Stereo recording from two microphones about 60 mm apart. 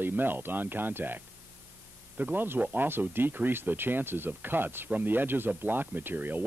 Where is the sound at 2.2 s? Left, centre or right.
Right.